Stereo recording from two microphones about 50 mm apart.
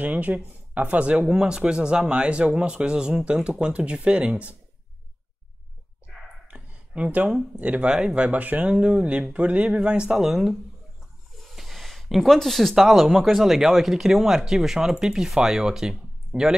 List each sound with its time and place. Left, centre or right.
0.0 s speech: right
1.3 s speech: centre
7.0 s speech: right
7.8 s speech: right
8.6 s speech: centre
11.4 s a sound: centre
12.4 s speech: centre